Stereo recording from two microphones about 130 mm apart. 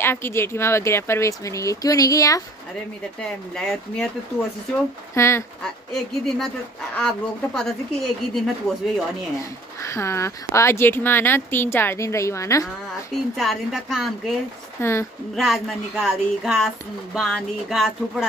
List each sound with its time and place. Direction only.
0.0 s speech: 20° left (ahead or behind)
3.2 s speech: 5° left (ahead or behind)
5.1 s speech: 20° left (ahead or behind)
5.6 s speech: 5° left (ahead or behind)
9.4 s speech: 20° left (ahead or behind)
13.1 s speech: centre (ahead or behind)
14.8 s speech: 20° left (ahead or behind)
15.3 s speech: centre (ahead or behind)